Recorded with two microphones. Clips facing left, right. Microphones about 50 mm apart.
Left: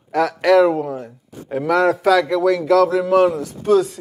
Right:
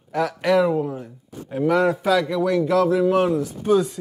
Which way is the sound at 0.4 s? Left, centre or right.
Left.